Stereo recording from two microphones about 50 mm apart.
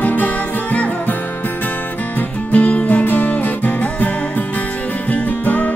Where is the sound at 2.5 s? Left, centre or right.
Left.